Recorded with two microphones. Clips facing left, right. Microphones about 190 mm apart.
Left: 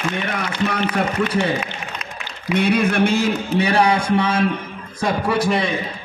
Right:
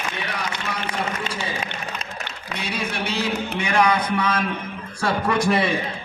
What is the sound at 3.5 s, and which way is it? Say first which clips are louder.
Speech: left 3 dB; 35° left (ahead or behind).